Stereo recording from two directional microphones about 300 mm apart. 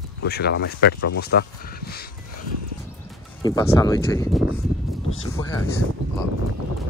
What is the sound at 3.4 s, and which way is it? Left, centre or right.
Speech, centre.